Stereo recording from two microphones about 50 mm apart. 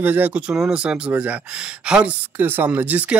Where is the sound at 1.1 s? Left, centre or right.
Right.